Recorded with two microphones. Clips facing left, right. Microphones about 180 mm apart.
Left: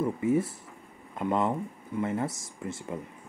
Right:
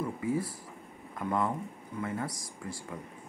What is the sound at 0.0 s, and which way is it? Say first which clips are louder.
Speech: left 6 dB; 25° left (ahead or behind).